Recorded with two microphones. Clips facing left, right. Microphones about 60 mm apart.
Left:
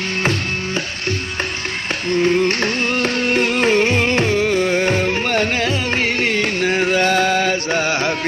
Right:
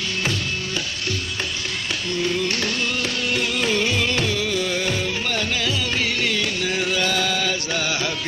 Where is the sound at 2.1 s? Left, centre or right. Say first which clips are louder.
Left 9 dB; left.